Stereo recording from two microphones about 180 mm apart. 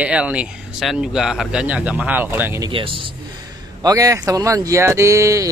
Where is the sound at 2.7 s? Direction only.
30° right (ahead or behind).